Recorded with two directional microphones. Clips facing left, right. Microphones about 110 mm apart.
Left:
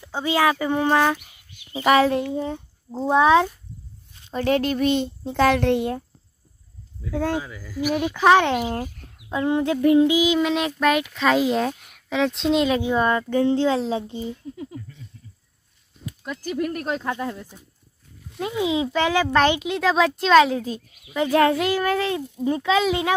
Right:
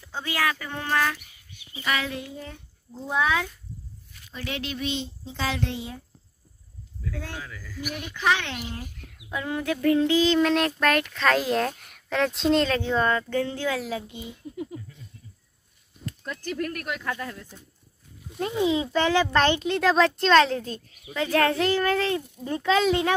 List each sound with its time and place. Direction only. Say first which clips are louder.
0.0 s a sound: left 7 dB; 20° left (ahead or behind)
1.7 s speech: left 12 dB; 35° left (ahead or behind)
2.3 s a sound: left 12 dB; 25° left (ahead or behind)
4.3 s a child's voice: left 12 dB; 45° left (ahead or behind)
7.3 s a child's voice: left 9 dB; 20° left (ahead or behind)
8.2 s speech: left 9 dB; 50° left (ahead or behind)
9.0 s a sound: left 7 dB; 25° left (ahead or behind); by 10.7 s 5° left (ahead or behind)
10.8 s a child's voice: left 3 dB; 5° left (ahead or behind); by 14.3 s 30° left (ahead or behind)
14.4 s speech: even; centre (ahead or behind)
16.1 s speech: left 3 dB; 10° left (ahead or behind)
16.8 s a sound: left 6 dB; 25° left (ahead or behind)
18.6 s a child's voice: left 1 dB; 10° left (ahead or behind)
22.6 s a child's voice: right 1 dB; 5° left (ahead or behind)